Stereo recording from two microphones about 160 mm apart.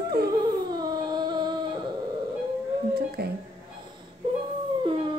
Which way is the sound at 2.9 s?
75° right (ahead or behind).